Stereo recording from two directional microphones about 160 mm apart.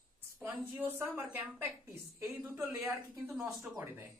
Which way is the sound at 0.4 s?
15° right (ahead or behind).